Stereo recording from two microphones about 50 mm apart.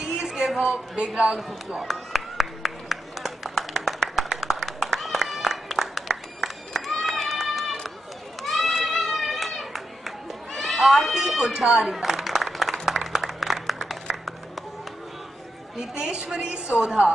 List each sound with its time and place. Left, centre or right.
0.0 s a sound: centre
0.5 s a man's voice: centre
0.9 s speech: right
1.8 s clapping: centre
6.9 s run: centre
8.7 s a sound: centre
10.8 s speech: centre
12.0 s a sound: centre
15.9 s speech: centre